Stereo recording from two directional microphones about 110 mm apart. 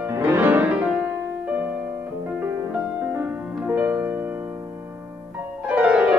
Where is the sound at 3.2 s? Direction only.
20° right (ahead or behind).